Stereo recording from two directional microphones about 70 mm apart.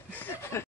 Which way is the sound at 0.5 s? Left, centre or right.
Left.